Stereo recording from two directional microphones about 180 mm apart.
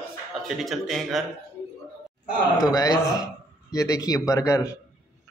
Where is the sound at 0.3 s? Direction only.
Centre (ahead or behind).